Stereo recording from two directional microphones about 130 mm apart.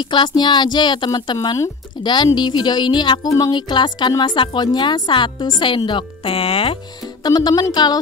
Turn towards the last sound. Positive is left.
turn(degrees=30)  # may be behind; listen again after turning